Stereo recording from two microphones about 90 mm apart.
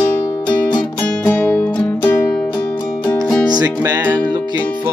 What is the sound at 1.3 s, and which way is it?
Music, 15° left (ahead or behind).